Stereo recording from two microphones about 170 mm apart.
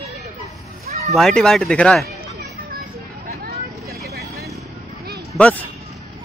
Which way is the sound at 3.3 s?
65° right (ahead or behind).